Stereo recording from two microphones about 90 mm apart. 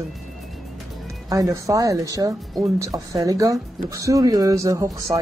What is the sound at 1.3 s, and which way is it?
Speech, 40° right (ahead or behind).